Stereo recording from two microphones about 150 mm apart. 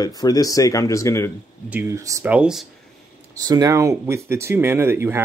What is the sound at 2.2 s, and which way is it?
Speech, 10° right (ahead or behind).